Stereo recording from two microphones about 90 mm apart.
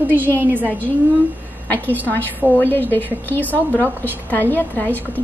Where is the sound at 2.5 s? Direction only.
20° left (ahead or behind).